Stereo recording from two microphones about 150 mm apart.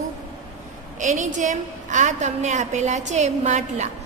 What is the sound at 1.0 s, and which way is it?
A woman's voice, 55° right (ahead or behind).